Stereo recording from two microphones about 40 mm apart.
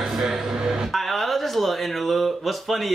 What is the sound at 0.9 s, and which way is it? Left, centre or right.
Speech, centre.